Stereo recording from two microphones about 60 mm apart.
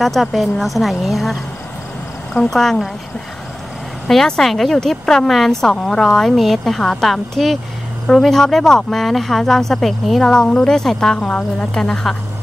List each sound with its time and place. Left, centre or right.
0.0 s a woman's voice: centre
4.1 s a woman's voice: centre
10.2 s a woman's voice: centre